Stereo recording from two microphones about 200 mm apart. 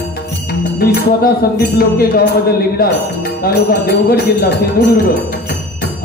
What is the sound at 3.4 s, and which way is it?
Speech, 50° left (ahead or behind).